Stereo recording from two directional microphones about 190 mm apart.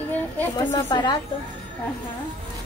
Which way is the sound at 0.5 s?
20° left (ahead or behind).